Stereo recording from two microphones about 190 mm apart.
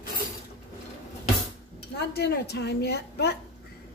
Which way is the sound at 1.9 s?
60° left (ahead or behind).